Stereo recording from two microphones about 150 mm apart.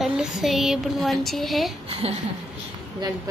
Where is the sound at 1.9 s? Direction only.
40° right (ahead or behind).